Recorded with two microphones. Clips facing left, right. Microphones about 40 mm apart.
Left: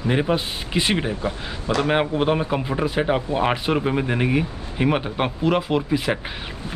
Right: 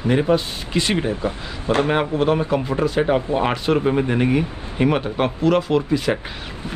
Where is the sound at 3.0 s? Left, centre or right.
Centre.